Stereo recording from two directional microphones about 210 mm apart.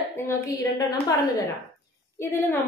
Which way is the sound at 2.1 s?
10° left (ahead or behind).